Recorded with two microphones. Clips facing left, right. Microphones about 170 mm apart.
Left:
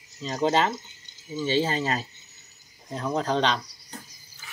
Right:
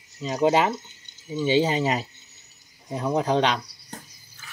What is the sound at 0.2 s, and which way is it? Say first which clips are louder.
Speech: right 3 dB; 10° right (ahead or behind).